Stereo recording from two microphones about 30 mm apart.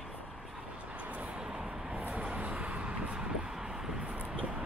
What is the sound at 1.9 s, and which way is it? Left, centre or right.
Vehicle, right.